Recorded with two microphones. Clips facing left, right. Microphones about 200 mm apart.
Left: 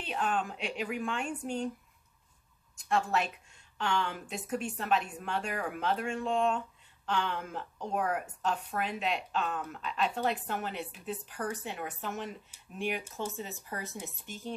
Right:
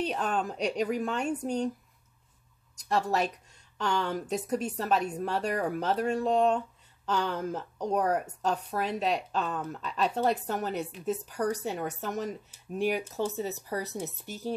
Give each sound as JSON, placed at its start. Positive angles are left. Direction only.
{"t": 0.0, "sound": "a woman's voice", "side_deg": -40}
{"t": 2.8, "sound": "a woman's voice", "side_deg": -40}